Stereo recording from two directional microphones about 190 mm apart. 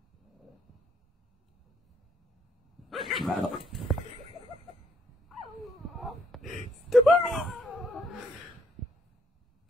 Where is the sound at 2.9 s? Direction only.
Centre (ahead or behind).